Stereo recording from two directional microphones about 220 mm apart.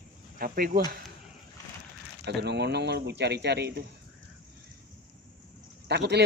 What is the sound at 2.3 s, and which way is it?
Speech, 50° right (ahead or behind).